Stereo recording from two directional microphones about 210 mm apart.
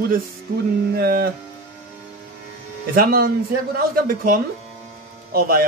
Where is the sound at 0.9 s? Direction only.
45° right (ahead or behind).